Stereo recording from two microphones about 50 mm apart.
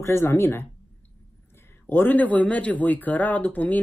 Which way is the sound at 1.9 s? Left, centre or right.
Left.